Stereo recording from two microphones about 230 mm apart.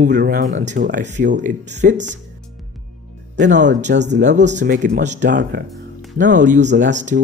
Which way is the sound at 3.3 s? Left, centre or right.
Right.